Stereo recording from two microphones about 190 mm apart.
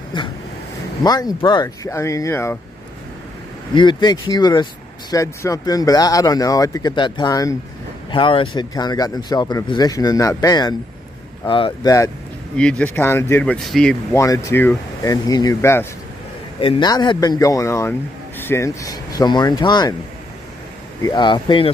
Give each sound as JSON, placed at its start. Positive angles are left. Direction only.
{"t": 0.1, "sound": "vehicle", "side_deg": 25}
{"t": 1.0, "sound": "speech", "side_deg": 20}
{"t": 3.7, "sound": "speech", "side_deg": 25}
{"t": 12.5, "sound": "speech", "side_deg": 5}
{"t": 14.1, "sound": "speech", "side_deg": 15}
{"t": 16.5, "sound": "speech", "side_deg": 30}
{"t": 21.0, "sound": "speech", "side_deg": 25}